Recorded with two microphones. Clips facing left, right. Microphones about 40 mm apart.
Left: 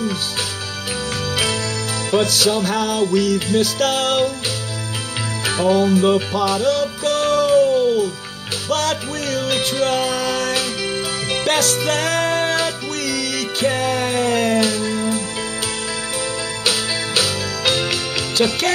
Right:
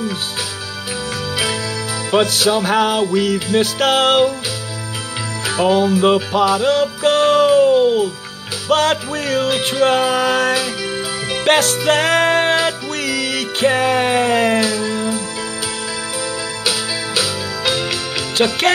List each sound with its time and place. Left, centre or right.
2.0 s music: right
5.6 s music: right
14.8 s music: right
18.4 s music: right